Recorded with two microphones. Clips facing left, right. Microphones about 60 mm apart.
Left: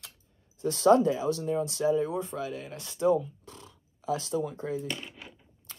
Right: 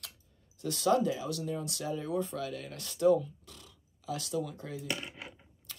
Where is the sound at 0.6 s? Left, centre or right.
Left.